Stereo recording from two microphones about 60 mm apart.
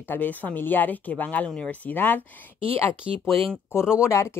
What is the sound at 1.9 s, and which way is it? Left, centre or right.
Speech, left.